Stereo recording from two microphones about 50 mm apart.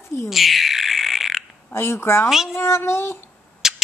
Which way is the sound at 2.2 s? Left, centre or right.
Centre.